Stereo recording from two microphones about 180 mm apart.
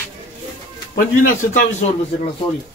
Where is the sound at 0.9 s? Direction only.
50° left (ahead or behind).